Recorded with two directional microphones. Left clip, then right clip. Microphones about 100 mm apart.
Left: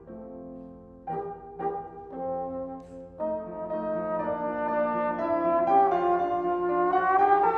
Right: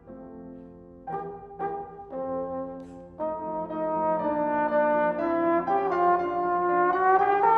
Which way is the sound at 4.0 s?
40° right (ahead or behind).